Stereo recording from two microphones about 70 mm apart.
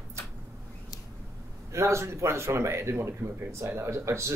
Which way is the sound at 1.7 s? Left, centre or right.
Right.